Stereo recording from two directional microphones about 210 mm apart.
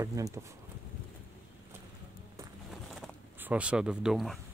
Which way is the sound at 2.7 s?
Centre (ahead or behind).